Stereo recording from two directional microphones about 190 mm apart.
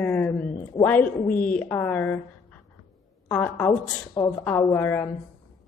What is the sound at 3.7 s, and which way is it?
Speech, 20° left (ahead or behind).